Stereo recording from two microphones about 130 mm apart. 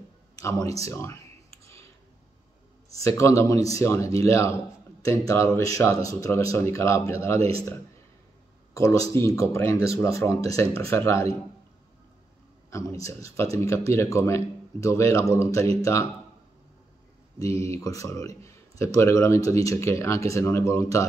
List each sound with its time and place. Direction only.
0.4 s speech: 25° left (ahead or behind)
3.0 s speech: 25° left (ahead or behind)
7.3 s speech: 50° right (ahead or behind)
8.7 s speech: 25° left (ahead or behind)
12.6 s speech: 25° left (ahead or behind)
17.6 s speech: 25° left (ahead or behind)